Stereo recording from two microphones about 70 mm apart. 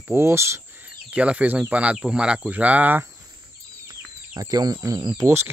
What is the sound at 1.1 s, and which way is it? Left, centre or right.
Speech, centre.